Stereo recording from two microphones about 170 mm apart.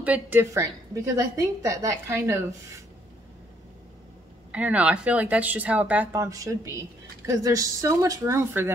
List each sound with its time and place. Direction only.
0.0 s a woman's voice: 10° right (ahead or behind)
4.5 s a woman's voice: 10° right (ahead or behind)